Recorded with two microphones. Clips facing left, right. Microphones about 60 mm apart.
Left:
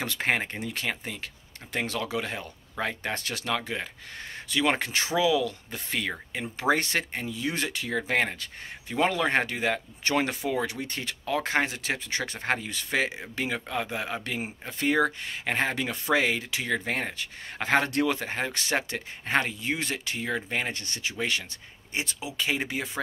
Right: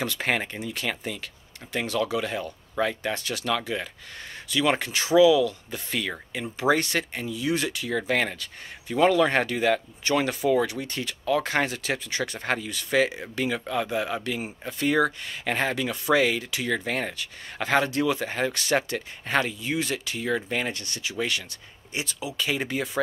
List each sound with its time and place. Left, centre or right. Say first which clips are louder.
0.0 s speech: right 1 dB; left
3.0 s speech: right 3 dB; left
3.4 s speech: right 3 dB; left
7.9 s speech: right 1 dB; left
11.3 s speech: right 1 dB; left
14.2 s speech: right 3 dB; left
17.8 s speech: right 1 dB; left
18.2 s speech: right 3 dB; left
19.6 s speech: right 2 dB; left